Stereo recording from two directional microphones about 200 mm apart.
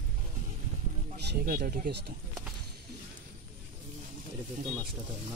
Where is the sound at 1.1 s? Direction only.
55° right (ahead or behind).